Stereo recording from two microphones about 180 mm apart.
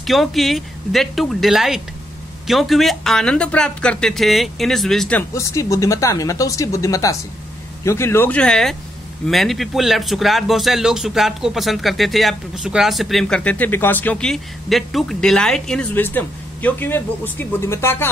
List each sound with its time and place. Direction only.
0.0 s speech: centre (ahead or behind)
5.3 s speech: 15° left (ahead or behind)